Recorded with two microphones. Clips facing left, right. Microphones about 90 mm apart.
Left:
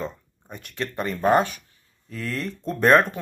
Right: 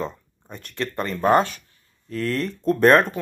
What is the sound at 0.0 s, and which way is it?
Speech, 5° left (ahead or behind).